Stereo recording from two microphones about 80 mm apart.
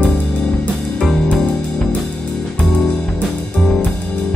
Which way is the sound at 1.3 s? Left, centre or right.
Centre.